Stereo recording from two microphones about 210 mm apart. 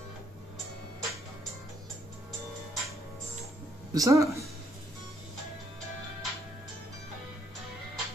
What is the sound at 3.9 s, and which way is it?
Speech, 15° right (ahead or behind).